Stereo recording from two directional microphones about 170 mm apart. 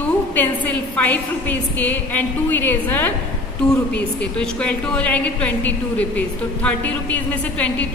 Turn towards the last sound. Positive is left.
turn(degrees=10)  # may be behind; listen again after turning